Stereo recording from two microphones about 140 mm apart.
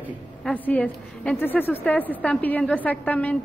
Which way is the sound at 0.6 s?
10° left (ahead or behind).